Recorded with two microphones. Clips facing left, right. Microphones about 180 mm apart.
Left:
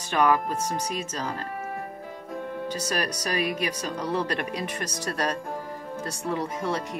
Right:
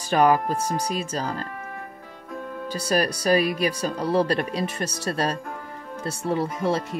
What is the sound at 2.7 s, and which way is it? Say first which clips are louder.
Speech: right 8 dB; 35° right (ahead or behind).